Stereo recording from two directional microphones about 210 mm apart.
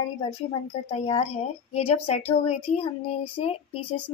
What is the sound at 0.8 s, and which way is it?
A woman's voice, 30° left (ahead or behind).